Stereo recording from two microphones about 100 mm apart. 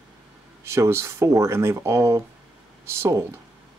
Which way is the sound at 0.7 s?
25° right (ahead or behind).